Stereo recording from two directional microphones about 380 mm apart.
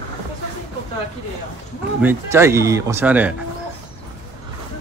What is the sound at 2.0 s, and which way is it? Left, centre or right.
A man's voice, centre.